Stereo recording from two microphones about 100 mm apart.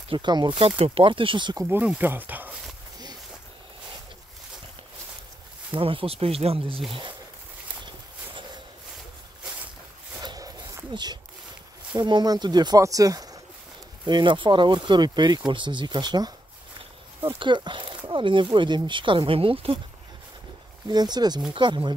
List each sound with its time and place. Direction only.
0.1 s speech: 50° right (ahead or behind)
0.6 s speech: 70° right (ahead or behind); by 1.6 s 55° right (ahead or behind)
1.8 s speech: 15° right (ahead or behind)
5.8 s speech: 65° right (ahead or behind)
6.9 s speech: 55° right (ahead or behind)
10.2 s a sound: 40° right (ahead or behind)
10.9 s speech: 45° right (ahead or behind)
14.0 s speech: 50° right (ahead or behind)
17.4 s speech: 50° right (ahead or behind); by 19.8 s 70° right (ahead or behind)
20.9 s speech: 45° right (ahead or behind)